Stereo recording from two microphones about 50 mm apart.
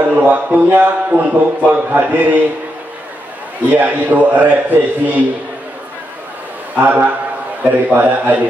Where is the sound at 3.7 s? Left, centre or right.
Right.